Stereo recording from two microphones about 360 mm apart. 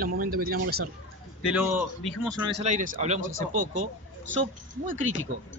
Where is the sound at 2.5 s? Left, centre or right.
Centre.